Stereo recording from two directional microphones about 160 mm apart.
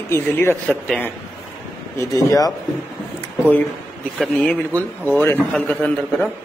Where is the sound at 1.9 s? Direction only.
20° left (ahead or behind).